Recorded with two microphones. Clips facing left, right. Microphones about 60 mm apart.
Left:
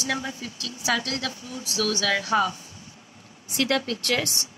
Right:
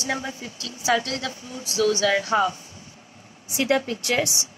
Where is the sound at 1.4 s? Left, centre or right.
Right.